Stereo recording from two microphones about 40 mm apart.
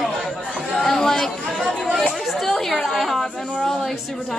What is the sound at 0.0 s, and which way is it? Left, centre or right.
Chatter, centre.